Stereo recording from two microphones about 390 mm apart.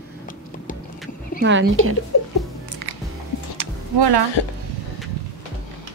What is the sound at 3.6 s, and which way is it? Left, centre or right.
Music, right.